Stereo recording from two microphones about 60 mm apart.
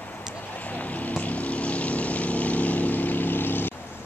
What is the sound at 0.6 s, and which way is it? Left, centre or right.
Vehicle, left.